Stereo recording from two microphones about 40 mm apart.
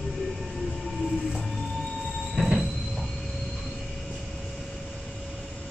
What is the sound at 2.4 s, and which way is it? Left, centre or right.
Train, centre.